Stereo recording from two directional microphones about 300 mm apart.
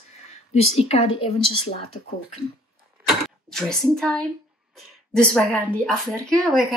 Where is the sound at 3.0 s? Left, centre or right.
Centre.